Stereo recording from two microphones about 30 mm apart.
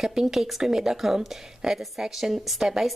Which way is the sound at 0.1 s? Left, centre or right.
Centre.